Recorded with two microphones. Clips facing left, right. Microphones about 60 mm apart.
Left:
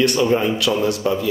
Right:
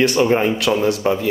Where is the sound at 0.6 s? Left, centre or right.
Right.